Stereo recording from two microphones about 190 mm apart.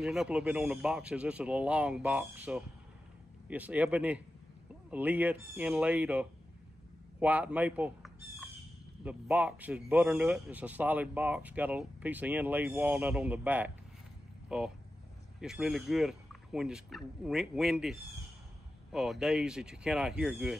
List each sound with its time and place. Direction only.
0.0 s speech: centre (ahead or behind)
15.4 s speech: 5° right (ahead or behind)